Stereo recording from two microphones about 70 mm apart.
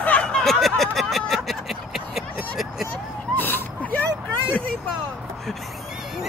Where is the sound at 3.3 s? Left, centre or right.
Left.